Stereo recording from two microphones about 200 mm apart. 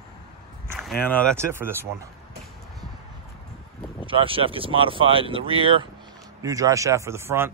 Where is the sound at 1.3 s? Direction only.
10° right (ahead or behind).